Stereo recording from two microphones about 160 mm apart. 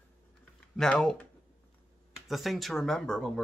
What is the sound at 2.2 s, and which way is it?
Speech, centre (ahead or behind).